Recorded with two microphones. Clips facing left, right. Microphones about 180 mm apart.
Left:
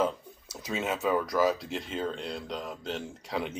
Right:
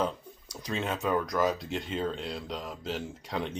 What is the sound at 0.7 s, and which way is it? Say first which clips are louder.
Speech: left 1 dB; 5° left (ahead or behind).